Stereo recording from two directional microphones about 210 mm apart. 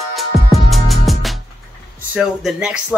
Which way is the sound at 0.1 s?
Centre (ahead or behind).